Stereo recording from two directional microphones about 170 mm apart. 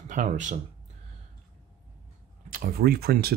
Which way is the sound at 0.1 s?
45° right (ahead or behind).